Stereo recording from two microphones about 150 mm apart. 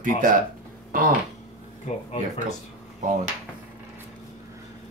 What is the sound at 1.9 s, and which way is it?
Speech, 45° left (ahead or behind).